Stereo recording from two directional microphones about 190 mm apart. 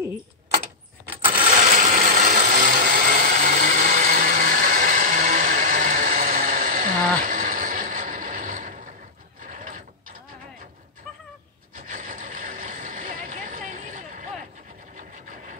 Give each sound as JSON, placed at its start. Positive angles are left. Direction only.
{"t": 1.5, "sound": "a sound", "side_deg": -40}
{"t": 9.5, "sound": "mechanisms", "side_deg": -45}
{"t": 11.9, "sound": "vehicle", "side_deg": -45}